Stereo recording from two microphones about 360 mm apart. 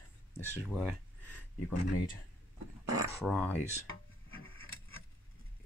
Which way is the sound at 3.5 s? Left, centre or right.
Centre.